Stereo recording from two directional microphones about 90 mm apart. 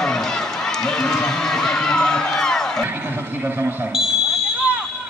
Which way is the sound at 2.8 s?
20° right (ahead or behind).